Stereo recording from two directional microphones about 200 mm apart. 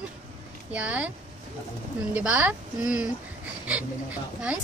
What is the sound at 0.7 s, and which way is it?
Speech, 5° right (ahead or behind).